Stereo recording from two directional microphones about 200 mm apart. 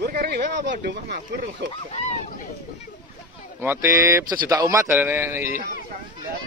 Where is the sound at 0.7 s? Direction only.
60° right (ahead or behind).